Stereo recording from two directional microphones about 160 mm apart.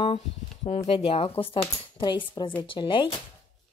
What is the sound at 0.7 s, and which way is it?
Speech, 40° left (ahead or behind).